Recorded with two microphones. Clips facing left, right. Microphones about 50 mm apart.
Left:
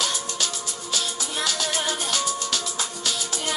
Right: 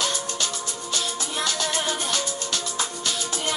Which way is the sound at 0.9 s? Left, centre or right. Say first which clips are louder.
Even; right.